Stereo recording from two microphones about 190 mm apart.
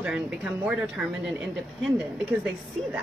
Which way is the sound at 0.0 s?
5° right (ahead or behind).